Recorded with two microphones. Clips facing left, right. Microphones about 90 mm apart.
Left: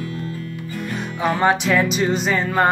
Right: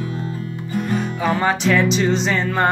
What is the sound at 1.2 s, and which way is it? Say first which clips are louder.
Music: left 2 dB; 15° left (ahead or behind).